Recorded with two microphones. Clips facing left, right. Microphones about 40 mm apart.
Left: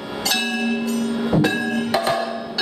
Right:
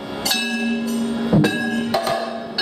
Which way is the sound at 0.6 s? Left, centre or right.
Centre.